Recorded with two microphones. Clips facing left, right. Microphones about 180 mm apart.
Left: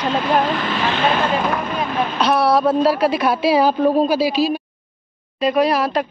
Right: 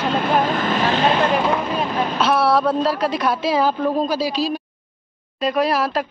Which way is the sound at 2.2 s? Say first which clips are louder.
Left 2 dB; 5° right (ahead or behind).